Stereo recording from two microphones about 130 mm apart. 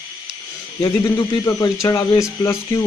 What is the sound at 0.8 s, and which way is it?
Speech, 30° left (ahead or behind).